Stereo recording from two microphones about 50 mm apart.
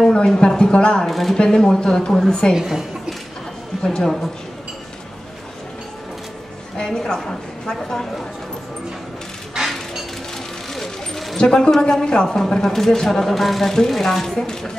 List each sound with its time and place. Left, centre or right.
0.1 s speech: centre
1.0 s a woman's voice: centre
1.4 s speech: centre
2.5 s a sound: centre
3.8 s speech: centre
6.8 s speech: centre
10.7 s vehicle: centre
11.3 s speech: centre